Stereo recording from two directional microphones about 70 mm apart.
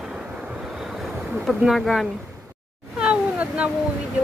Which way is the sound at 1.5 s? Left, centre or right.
Centre.